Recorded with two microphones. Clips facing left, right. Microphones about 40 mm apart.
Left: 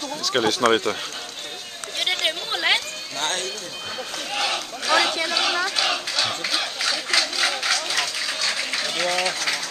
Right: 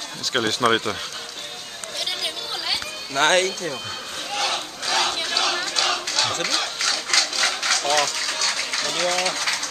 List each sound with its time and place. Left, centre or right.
0.5 s speech: centre
2.0 s chatter: left
3.2 s speech: right
4.3 s run: centre
5.3 s battle cry: centre
6.4 s a sound: centre